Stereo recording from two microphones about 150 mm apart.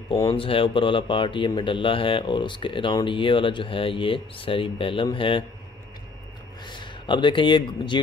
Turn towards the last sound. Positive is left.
turn(degrees=30)  # may be behind; listen again after turning